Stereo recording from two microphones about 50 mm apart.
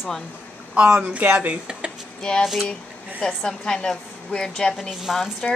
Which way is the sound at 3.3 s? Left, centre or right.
Centre.